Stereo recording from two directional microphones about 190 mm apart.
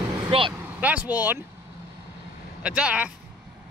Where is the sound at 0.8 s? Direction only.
10° right (ahead or behind).